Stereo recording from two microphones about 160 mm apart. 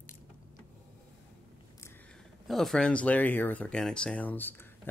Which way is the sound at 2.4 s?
Centre (ahead or behind).